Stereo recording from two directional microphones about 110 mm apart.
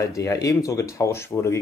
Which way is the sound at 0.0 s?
25° left (ahead or behind).